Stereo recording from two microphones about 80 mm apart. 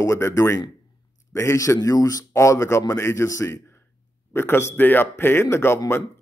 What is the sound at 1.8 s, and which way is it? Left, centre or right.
A man's voice, left.